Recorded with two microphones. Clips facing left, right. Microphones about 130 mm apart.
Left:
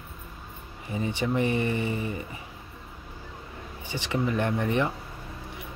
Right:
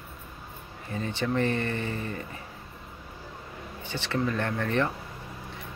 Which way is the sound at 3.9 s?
15° left (ahead or behind).